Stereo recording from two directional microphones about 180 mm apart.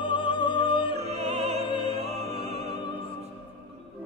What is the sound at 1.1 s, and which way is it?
Music, 35° right (ahead or behind).